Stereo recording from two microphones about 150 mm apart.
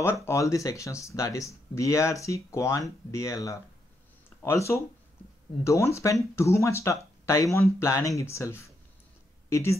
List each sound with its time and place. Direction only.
0.0 s speech: 15° left (ahead or behind)